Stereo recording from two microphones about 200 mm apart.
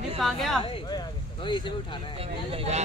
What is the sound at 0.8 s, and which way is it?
Speech, 20° left (ahead or behind).